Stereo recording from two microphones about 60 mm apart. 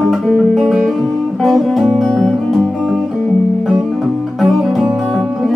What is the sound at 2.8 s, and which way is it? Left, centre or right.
Music, centre.